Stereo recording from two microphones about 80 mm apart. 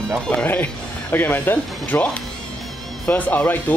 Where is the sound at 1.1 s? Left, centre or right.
Left.